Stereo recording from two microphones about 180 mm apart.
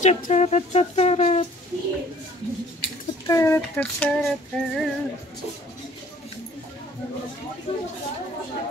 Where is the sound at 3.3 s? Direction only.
15° left (ahead or behind).